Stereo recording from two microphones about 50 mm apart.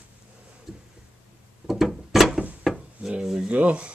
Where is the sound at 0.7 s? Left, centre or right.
Centre.